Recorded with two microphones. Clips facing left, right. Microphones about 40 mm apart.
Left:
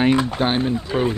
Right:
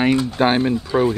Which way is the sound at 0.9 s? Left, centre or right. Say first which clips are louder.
Right 4 dB; left.